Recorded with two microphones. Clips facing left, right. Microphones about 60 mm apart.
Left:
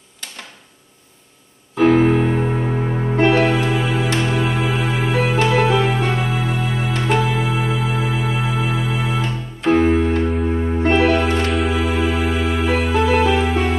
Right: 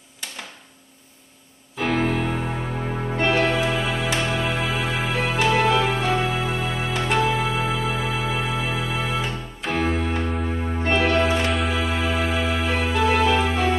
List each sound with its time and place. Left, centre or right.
1.8 s piano: centre
2.2 s music: centre